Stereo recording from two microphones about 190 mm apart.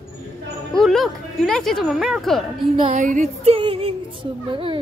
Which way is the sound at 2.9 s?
40° right (ahead or behind).